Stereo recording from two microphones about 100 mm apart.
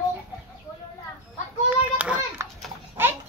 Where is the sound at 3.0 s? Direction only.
20° right (ahead or behind).